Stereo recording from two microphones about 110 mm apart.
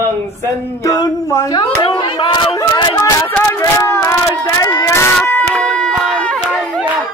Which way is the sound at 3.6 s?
25° left (ahead or behind).